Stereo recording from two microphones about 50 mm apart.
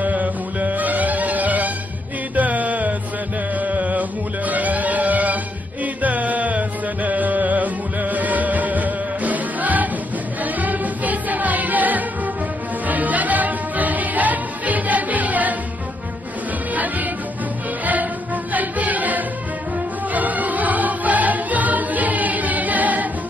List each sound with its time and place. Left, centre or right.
0.0 s music: right
3.5 s chant: right
4.5 s music: right
16.7 s music: right